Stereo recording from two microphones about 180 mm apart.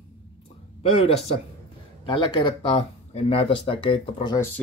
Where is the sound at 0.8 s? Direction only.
30° left (ahead or behind).